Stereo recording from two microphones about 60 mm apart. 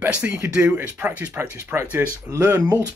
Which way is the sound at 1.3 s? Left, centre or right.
Right.